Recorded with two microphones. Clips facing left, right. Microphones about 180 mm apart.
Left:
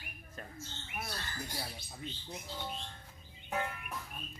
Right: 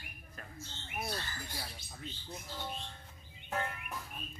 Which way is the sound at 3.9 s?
5° right (ahead or behind).